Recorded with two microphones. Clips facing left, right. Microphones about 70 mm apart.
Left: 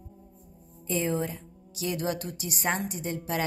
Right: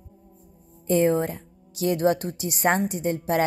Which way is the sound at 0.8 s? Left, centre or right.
Right.